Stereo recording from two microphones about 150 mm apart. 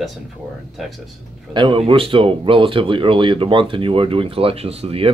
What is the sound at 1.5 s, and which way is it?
Speech, 35° right (ahead or behind).